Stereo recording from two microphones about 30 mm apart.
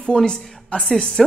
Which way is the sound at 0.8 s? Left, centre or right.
Left.